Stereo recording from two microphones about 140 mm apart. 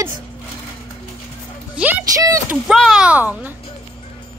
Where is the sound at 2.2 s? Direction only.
25° right (ahead or behind).